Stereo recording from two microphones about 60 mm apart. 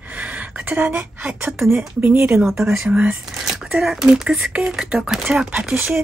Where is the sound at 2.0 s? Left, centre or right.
Right.